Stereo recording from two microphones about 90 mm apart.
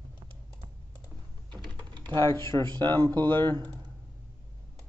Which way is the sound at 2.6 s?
55° right (ahead or behind).